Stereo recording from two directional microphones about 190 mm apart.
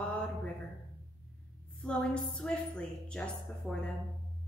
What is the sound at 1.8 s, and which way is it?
A woman's voice, 5° left (ahead or behind).